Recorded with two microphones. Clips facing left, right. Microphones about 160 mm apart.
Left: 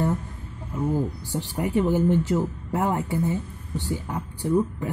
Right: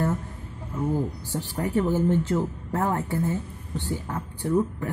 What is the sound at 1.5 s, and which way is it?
A woman's voice, 15° left (ahead or behind).